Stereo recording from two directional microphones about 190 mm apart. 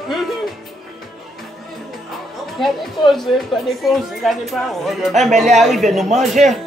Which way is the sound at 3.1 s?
Centre (ahead or behind).